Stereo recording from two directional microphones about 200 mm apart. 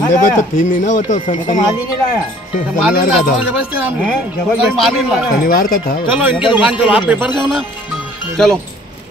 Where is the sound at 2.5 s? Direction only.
45° left (ahead or behind).